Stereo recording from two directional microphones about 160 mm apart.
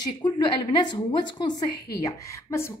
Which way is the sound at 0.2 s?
30° left (ahead or behind).